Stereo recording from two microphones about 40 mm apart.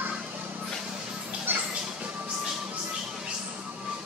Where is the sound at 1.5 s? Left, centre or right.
Right.